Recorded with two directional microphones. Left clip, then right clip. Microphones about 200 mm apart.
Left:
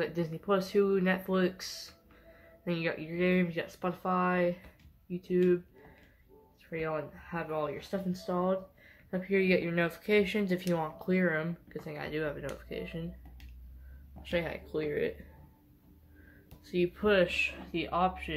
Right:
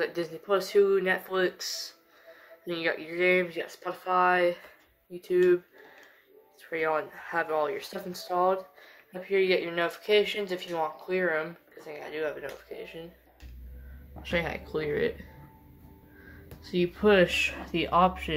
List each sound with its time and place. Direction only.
0.0 s speech: centre (ahead or behind)
6.6 s speech: 10° right (ahead or behind)
9.2 s speech: 10° left (ahead or behind)
14.2 s speech: 15° left (ahead or behind)
16.6 s speech: 10° left (ahead or behind)
17.0 s speech: 5° right (ahead or behind)